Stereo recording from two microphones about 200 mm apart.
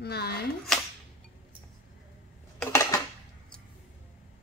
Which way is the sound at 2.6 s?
15° left (ahead or behind).